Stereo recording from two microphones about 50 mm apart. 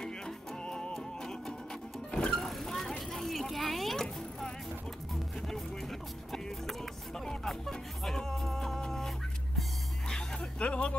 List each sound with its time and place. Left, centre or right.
0.0 s music: centre
2.3 s vehicle: centre
5.5 s music: centre
10.0 s music: centre
10.6 s speech: left